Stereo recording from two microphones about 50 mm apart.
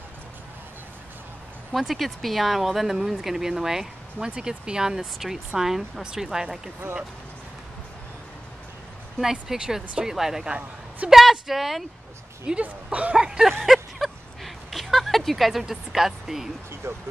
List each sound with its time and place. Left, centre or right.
1.7 s speech: centre
9.2 s speech: centre
12.6 s speech: right
13.1 s speech: centre
13.7 s a sound: centre
16.8 s speech: right